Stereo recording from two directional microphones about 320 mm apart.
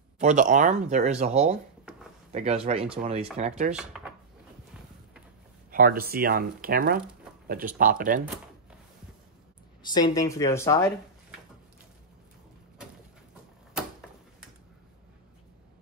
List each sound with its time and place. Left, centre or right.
0.2 s speech: right
3.9 s drawer open or close: centre
5.7 s speech: right
9.8 s speech: centre